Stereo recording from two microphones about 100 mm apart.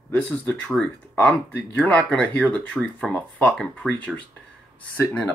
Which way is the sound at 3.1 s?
15° left (ahead or behind).